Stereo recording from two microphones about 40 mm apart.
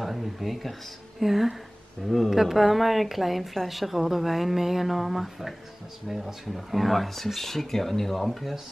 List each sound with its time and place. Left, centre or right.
0.0 s speech: centre